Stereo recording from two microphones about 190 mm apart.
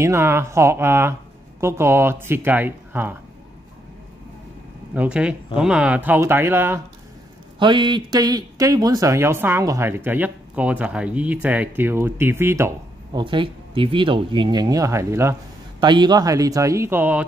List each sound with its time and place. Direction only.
0.0 s speech: 15° right (ahead or behind)
4.9 s speech: 5° right (ahead or behind)
7.5 s speech: 25° right (ahead or behind)
13.2 s speech: 25° right (ahead or behind); by 17.3 s 10° right (ahead or behind)